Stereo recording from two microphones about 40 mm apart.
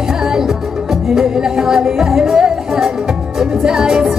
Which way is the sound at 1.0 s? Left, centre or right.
Centre.